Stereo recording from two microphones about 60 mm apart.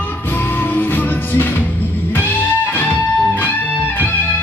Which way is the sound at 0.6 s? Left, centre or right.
Left.